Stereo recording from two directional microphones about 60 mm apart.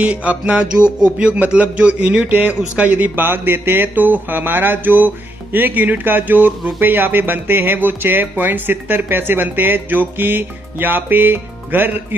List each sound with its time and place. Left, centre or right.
0.0 s music: right
2.2 s speech: right